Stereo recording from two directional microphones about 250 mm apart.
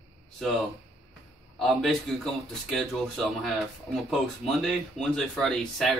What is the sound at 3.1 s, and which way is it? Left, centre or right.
Speech, centre.